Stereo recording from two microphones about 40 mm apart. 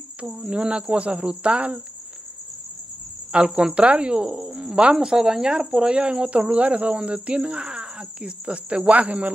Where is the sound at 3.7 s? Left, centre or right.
Right.